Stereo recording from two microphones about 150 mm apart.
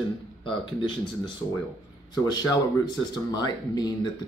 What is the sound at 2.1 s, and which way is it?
Speech, 25° left (ahead or behind).